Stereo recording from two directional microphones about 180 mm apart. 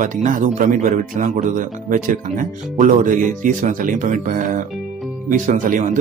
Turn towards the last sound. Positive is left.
turn(degrees=-50)  # may be behind; listen again after turning